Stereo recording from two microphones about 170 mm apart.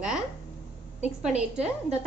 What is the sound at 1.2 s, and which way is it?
Speech, 40° right (ahead or behind).